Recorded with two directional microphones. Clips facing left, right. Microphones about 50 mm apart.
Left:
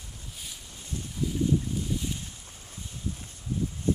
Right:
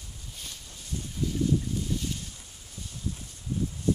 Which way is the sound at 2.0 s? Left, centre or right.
Centre.